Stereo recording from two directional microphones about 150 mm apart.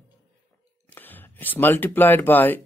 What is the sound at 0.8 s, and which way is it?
Speech, 10° left (ahead or behind).